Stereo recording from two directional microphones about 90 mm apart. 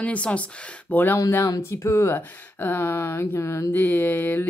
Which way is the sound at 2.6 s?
25° left (ahead or behind).